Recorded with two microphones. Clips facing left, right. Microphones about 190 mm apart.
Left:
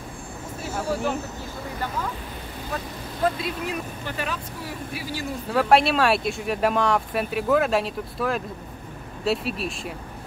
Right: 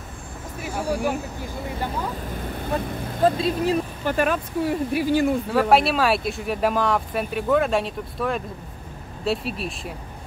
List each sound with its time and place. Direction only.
0.6 s vehicle: 10° right (ahead or behind)
3.3 s speech: 30° right (ahead or behind)
4.0 s speech: 50° right (ahead or behind)
5.5 s speech: centre (ahead or behind)